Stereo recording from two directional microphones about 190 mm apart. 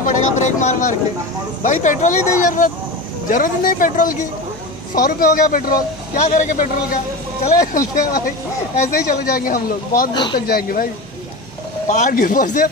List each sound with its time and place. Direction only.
0.0 s a sound: 40° left (ahead or behind)
1.6 s speech: 40° left (ahead or behind)
10.1 s speech: 25° left (ahead or behind)
10.4 s speech: 50° left (ahead or behind)
11.9 s speech: 45° left (ahead or behind)